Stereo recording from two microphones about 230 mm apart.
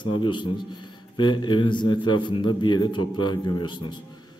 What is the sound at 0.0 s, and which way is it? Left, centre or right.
A man's voice, centre.